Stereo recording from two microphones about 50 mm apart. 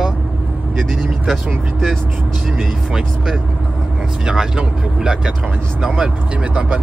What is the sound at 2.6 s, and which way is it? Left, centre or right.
Speech, centre.